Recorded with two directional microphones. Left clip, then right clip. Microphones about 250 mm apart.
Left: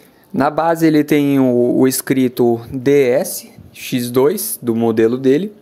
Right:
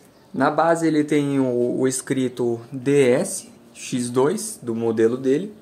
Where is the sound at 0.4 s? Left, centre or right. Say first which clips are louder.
Left 4 dB; left.